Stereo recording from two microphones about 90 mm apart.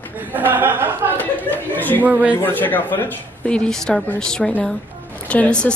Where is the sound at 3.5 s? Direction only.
10° left (ahead or behind).